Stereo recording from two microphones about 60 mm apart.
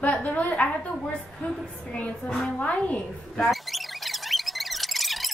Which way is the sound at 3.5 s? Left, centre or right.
Centre.